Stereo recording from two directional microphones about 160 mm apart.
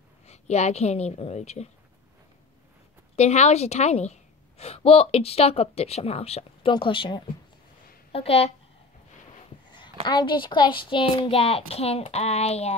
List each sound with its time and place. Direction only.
0.3 s a woman's voice: 45° left (ahead or behind)
3.2 s a woman's voice: 45° left (ahead or behind)
10.0 s a woman's voice: 30° left (ahead or behind)